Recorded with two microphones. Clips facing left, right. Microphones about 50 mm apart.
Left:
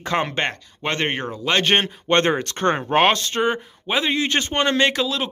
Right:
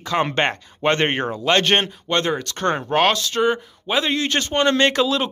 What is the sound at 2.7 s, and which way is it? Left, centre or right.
Speech, centre.